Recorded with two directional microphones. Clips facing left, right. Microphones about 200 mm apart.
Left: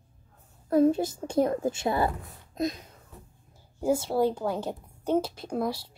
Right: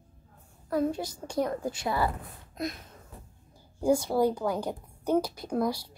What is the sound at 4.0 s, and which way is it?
A woman's voice, 25° left (ahead or behind).